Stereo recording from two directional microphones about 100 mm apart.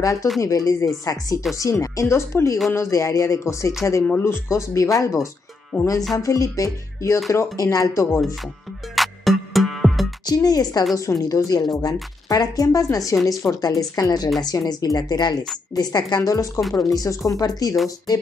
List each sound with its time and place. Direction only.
0.0 s speech: 35° left (ahead or behind)
8.9 s music: centre (ahead or behind)
10.2 s a woman's voice: 40° left (ahead or behind)